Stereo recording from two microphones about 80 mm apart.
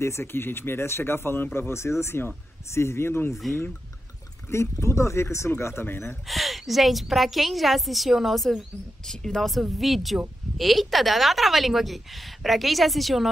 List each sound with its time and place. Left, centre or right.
0.0 s speech: left
4.5 s speech: left
6.2 s a woman's voice: centre